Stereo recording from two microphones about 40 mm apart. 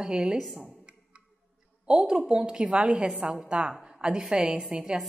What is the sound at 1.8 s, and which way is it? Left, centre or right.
Speech, centre.